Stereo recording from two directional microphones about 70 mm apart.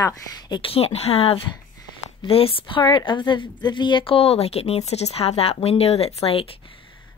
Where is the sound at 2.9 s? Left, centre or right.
Left.